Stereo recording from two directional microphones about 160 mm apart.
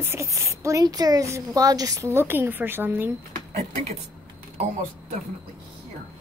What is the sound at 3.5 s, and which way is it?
Speech, 40° right (ahead or behind).